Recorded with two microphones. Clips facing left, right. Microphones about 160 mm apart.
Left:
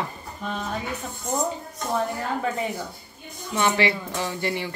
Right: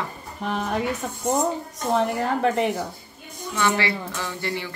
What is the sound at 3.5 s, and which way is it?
A woman's voice, 20° left (ahead or behind).